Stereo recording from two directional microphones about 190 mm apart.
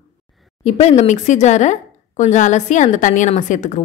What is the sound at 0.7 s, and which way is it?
A woman's voice, 35° left (ahead or behind).